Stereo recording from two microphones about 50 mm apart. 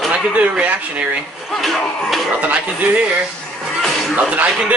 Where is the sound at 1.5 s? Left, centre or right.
Centre.